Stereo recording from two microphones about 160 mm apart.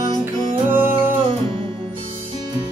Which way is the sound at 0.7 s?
15° right (ahead or behind).